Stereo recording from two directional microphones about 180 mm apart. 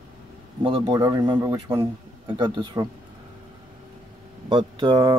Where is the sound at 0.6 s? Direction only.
30° right (ahead or behind).